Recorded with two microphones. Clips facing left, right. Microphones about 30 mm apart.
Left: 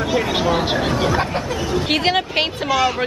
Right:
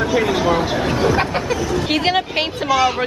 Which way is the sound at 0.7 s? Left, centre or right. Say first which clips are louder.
Right 2 dB; centre.